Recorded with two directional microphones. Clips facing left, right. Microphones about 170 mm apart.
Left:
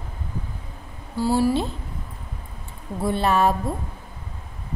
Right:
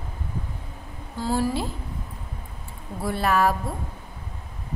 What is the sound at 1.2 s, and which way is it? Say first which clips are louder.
Speech: left 5 dB; 10° left (ahead or behind).